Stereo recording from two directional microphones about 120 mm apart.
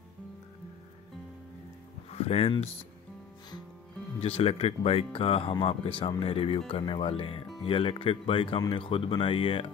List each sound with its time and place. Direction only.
2.0 s speech: 60° left (ahead or behind)
4.2 s speech: 55° left (ahead or behind)